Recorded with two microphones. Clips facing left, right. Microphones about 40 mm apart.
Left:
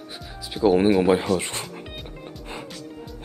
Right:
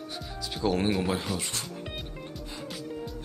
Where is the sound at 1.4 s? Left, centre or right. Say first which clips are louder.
Left 4 dB; left.